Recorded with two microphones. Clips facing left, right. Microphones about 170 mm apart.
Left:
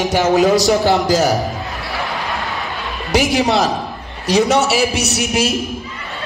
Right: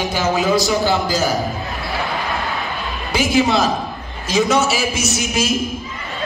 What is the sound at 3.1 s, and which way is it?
Music, 70° left (ahead or behind).